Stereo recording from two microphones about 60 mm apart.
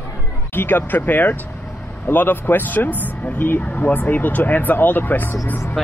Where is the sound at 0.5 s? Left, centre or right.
Left.